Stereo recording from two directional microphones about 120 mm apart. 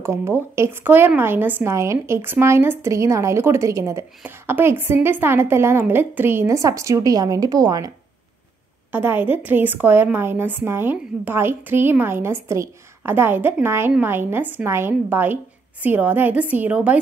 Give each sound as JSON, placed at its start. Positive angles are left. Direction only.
{"t": 0.0, "sound": "a woman's voice", "side_deg": -20}
{"t": 8.9, "sound": "a woman's voice", "side_deg": -15}